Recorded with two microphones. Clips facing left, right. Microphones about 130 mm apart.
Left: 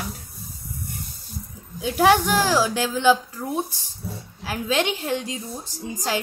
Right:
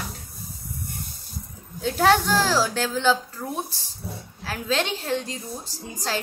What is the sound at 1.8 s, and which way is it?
A woman's voice, 15° left (ahead or behind).